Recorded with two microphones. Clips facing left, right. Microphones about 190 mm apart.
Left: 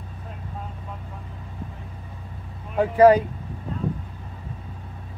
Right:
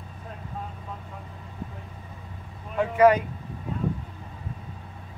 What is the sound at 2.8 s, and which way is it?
Speech, 35° left (ahead or behind).